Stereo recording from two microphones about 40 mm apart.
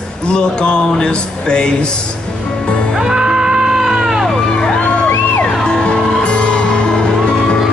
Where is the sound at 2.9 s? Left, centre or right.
Centre.